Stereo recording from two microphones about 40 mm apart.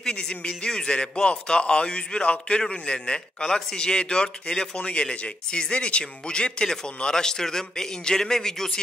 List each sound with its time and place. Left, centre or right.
0.0 s a man's voice: centre